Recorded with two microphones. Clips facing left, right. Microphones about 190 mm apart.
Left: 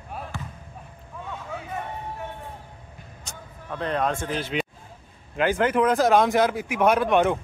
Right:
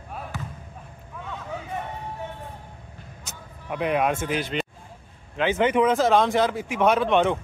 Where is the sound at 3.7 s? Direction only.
15° right (ahead or behind).